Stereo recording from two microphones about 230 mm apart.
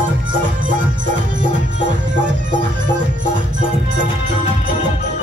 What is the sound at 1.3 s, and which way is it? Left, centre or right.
Music, right.